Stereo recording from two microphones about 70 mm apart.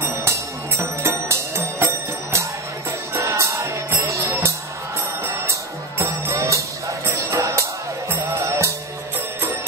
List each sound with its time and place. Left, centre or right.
0.0 s music: right